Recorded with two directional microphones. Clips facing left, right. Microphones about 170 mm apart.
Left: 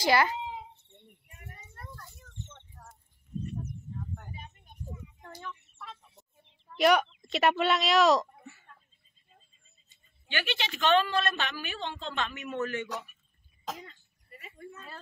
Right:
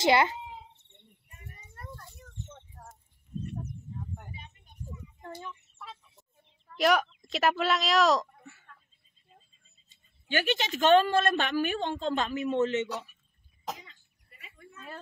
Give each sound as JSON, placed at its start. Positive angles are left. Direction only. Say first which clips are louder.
{"t": 0.0, "sound": "a child's voice", "louder": "right 2 dB", "side_deg": -25}
{"t": 2.4, "sound": "a sound", "louder": "right 4 dB", "side_deg": -35}
{"t": 5.4, "sound": "fowl", "louder": "even", "side_deg": -15}
{"t": 6.8, "sound": "speech", "louder": "left 1 dB", "side_deg": 0}
{"t": 10.3, "sound": "a woman's voice", "louder": "right 5 dB", "side_deg": -45}
{"t": 13.8, "sound": "a sound", "louder": "left 6 dB", "side_deg": 45}